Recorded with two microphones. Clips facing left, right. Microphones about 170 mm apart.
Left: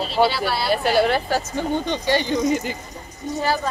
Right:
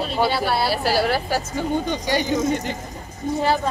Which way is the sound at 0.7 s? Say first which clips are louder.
Left 2 dB; 5° right (ahead or behind).